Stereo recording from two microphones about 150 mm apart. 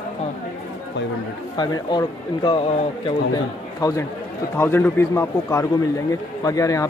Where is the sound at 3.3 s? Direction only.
25° left (ahead or behind).